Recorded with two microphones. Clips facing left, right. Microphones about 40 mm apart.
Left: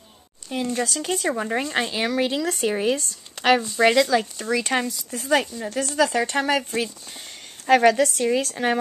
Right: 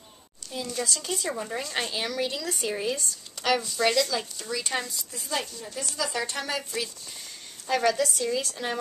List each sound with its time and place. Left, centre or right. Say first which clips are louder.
0.5 s speech: left 6 dB; left
4.5 s speech: left 7 dB; left
7.2 s speech: left 3 dB; left